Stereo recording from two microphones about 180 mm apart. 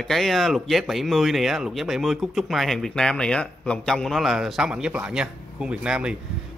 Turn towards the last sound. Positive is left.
turn(degrees=-5)  # may be behind; listen again after turning